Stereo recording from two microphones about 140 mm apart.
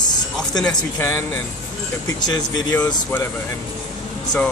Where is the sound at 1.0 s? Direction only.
15° left (ahead or behind).